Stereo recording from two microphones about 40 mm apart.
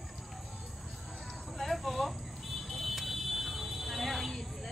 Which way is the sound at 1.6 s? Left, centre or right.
Centre.